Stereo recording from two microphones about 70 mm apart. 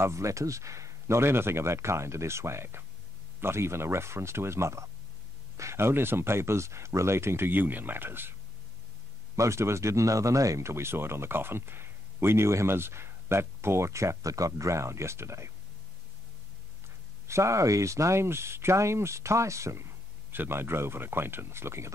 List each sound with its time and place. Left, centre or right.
0.0 s speech: right
9.3 s speech: right
17.3 s speech: right